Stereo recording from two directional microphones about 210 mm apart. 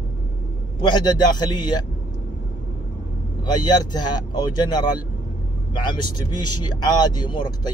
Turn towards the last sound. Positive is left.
turn(degrees=20)  # may be behind; listen again after turning